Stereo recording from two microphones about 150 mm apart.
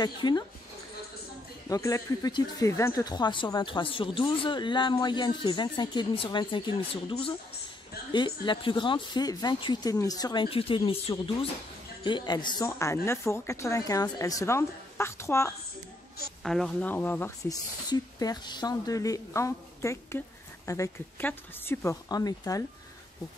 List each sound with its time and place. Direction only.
0.0 s a woman's voice: 25° left (ahead or behind)
1.7 s a woman's voice: 20° left (ahead or behind)
16.4 s speech: centre (ahead or behind)
16.9 s speech: 10° left (ahead or behind)
17.5 s a woman's voice: 25° left (ahead or behind)
22.1 s a woman's voice: 25° left (ahead or behind)